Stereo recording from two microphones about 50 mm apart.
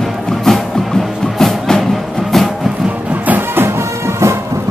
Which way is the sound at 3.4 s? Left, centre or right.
Right.